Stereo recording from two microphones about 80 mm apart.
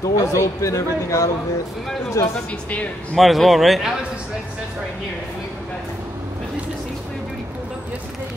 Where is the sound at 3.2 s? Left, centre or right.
Centre.